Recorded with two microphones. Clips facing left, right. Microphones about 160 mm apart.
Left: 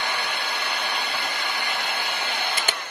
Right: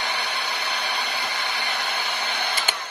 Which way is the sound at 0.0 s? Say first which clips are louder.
Even; 50° left (ahead or behind).